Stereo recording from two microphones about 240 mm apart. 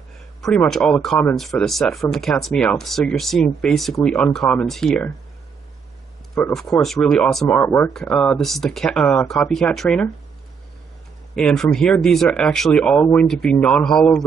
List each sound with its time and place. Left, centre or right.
0.4 s speech: centre
6.3 s speech: centre
11.3 s speech: centre